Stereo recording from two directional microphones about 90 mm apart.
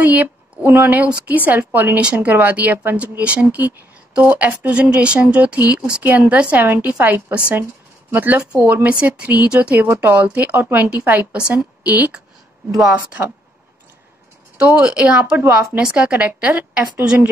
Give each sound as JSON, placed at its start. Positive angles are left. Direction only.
{"t": 0.0, "sound": "a woman's voice", "side_deg": -20}
{"t": 14.6, "sound": "speech", "side_deg": -10}
{"t": 15.3, "sound": "a woman's voice", "side_deg": -25}
{"t": 15.8, "sound": "speech", "side_deg": -15}